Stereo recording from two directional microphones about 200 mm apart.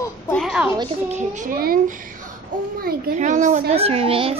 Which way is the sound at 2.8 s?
40° right (ahead or behind).